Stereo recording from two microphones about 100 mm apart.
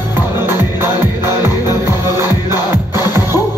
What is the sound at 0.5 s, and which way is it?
Music, 25° right (ahead or behind).